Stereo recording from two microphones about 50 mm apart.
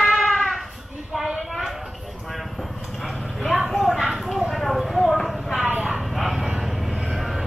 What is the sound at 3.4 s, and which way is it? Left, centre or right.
Vehicle, centre.